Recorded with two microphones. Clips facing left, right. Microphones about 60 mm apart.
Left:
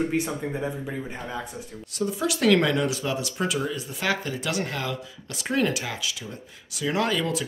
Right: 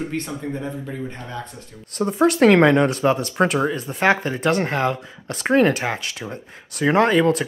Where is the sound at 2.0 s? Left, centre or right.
Right.